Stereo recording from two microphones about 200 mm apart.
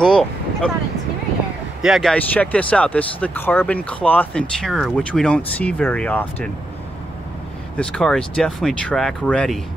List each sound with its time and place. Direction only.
0.0 s vehicle: 5° left (ahead or behind)
1.8 s speech: centre (ahead or behind)
7.7 s speech: 5° left (ahead or behind)